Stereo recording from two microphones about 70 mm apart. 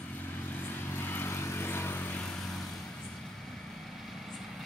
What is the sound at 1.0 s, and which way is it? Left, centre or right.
Vehicle, left.